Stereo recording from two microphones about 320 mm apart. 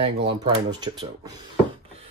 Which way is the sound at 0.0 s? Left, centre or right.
Centre.